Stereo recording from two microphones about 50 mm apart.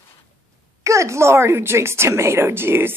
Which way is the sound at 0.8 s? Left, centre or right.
Right.